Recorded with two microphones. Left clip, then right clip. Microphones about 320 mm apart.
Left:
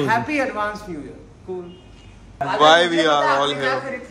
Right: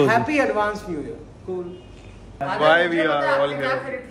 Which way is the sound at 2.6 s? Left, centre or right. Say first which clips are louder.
Left 3 dB; centre.